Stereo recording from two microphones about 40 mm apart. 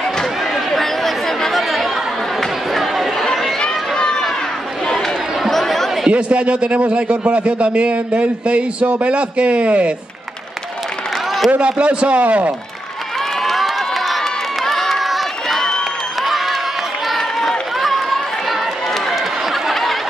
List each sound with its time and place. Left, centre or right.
0.0 s chatter: centre
3.5 s run: centre
5.5 s chatter: centre
6.0 s a man's voice: right
11.6 s a man's voice: right
13.4 s crowd: centre
17.2 s run: centre